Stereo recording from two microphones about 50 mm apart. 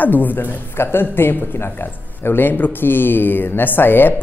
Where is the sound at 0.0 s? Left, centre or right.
Left.